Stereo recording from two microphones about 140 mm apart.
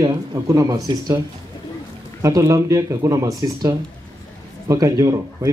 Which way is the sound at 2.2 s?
25° right (ahead or behind).